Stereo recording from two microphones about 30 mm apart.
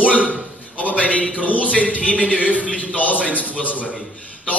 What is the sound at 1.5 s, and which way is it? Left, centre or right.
Speech, left.